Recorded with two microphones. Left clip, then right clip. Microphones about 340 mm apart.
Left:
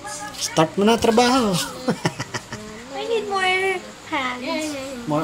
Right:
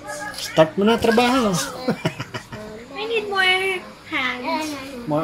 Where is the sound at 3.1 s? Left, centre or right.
Centre.